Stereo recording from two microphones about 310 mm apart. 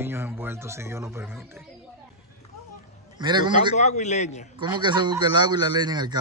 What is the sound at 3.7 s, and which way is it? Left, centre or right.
Speech, left.